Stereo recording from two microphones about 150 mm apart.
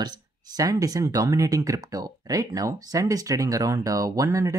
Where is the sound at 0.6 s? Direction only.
25° right (ahead or behind).